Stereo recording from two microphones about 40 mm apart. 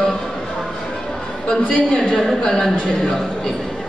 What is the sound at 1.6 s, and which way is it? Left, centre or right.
Speech, left.